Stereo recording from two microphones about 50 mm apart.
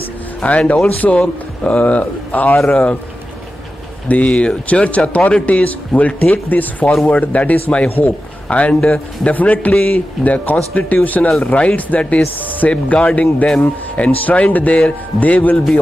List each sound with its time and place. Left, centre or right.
0.5 s speech: left
4.1 s a man's voice: left